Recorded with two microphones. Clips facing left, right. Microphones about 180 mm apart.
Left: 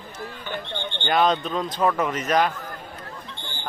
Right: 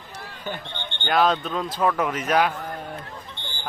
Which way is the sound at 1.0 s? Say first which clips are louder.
Even; centre (ahead or behind).